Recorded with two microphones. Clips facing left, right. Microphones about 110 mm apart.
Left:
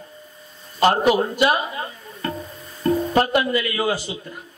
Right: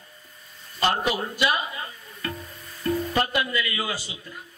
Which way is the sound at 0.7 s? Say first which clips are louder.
Left 8 dB; 45° left (ahead or behind).